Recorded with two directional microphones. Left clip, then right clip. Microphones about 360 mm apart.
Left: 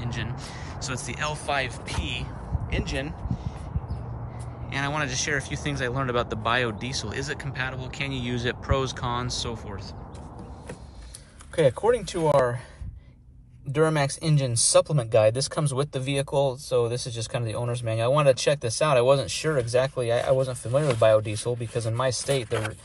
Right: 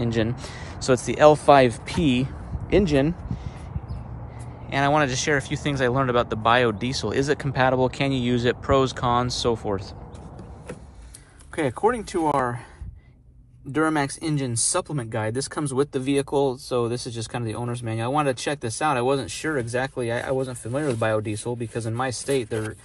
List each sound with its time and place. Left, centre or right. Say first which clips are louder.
0.0 s speech: right 9 dB; centre
4.6 s speech: right 8 dB; centre
11.5 s speech: left 2 dB; centre
13.7 s speech: even; centre